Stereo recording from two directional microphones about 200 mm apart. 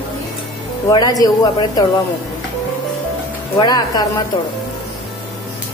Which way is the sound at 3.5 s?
20° left (ahead or behind).